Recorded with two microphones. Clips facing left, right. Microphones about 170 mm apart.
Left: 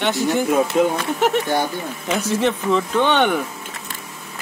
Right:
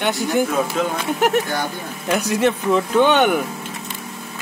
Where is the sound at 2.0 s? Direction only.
Centre (ahead or behind).